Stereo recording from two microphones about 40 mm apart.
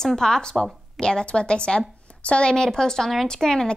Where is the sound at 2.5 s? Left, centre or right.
Centre.